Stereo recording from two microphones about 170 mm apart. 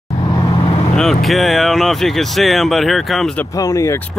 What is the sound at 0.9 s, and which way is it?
Speech, centre (ahead or behind).